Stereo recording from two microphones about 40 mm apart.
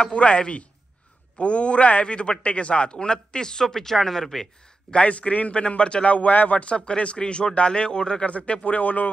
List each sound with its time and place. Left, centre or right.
0.0 s a man's voice: left; by 4.5 s centre
4.9 s a man's voice: left
6.7 s speech: left
8.3 s a man's voice: left